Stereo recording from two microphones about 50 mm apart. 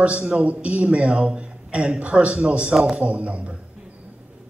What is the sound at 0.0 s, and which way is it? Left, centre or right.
A man's voice, right.